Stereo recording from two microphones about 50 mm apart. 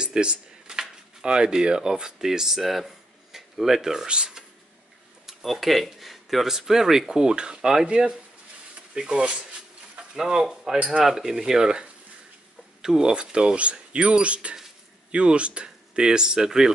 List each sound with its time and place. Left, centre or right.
0.0 s speech: centre
5.2 s speech: centre; by 9.5 s right
10.1 s speech: centre